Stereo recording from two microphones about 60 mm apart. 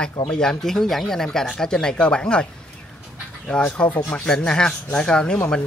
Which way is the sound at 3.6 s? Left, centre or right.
Left.